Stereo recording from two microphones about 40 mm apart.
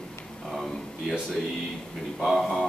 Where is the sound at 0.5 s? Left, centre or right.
Centre.